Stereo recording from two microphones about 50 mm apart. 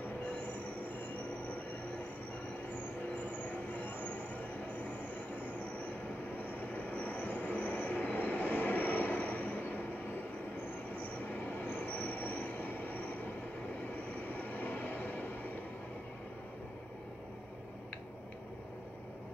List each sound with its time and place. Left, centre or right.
3.3 s train: left
6.3 s train: left
11.0 s train: left
14.2 s vehicle: left